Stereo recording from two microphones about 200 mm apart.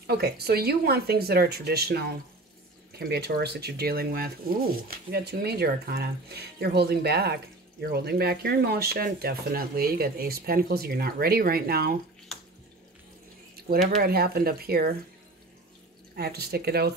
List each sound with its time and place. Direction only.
0.0 s speech: 55° right (ahead or behind)
13.6 s speech: 50° right (ahead or behind)
16.2 s speech: 55° right (ahead or behind)